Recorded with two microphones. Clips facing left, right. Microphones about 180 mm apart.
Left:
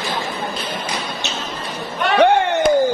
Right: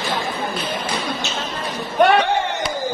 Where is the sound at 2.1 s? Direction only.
55° left (ahead or behind).